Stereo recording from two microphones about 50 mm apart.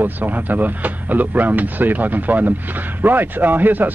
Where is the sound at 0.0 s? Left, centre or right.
Right.